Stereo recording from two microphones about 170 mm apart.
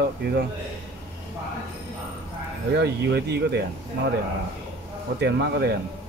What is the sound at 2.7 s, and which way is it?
Speech, 80° right.